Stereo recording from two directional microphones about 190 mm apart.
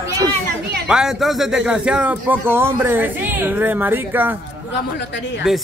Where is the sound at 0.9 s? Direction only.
5° right (ahead or behind).